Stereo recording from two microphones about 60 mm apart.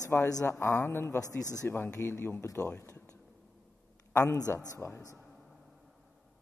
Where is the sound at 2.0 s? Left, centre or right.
Left.